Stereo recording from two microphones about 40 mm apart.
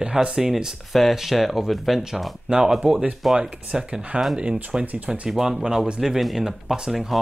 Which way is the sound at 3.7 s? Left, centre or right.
Right.